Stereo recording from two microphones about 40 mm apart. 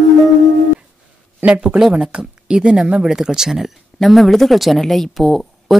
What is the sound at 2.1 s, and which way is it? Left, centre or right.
Speech, right.